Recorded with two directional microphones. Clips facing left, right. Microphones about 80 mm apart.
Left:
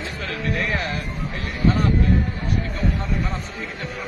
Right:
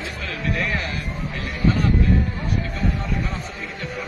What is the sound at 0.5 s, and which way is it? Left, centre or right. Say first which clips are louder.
Speech: left 1 dB; left.